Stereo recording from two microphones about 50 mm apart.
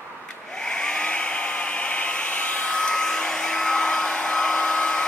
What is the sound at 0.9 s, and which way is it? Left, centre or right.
Hair dryer, centre.